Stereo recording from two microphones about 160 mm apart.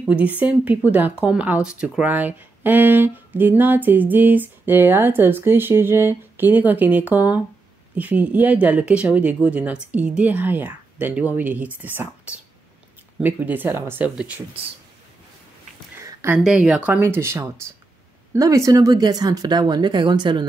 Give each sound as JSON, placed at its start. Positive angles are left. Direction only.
{"t": 0.0, "sound": "speech", "side_deg": -10}
{"t": 16.0, "sound": "a sound", "side_deg": -20}
{"t": 16.4, "sound": "speech", "side_deg": -5}